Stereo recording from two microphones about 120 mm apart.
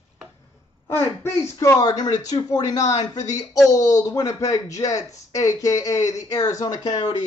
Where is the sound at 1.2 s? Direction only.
25° left (ahead or behind).